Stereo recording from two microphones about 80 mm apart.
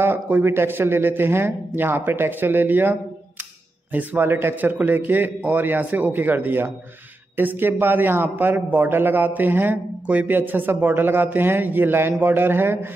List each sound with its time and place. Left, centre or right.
0.0 s a man's voice: right